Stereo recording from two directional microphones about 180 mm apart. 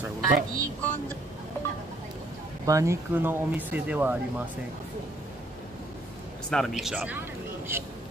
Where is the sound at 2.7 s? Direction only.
15° right (ahead or behind).